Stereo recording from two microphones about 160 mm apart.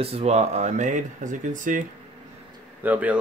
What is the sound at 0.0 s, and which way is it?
Speech, 40° right (ahead or behind).